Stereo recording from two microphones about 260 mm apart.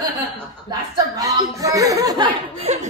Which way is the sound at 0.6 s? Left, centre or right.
Centre.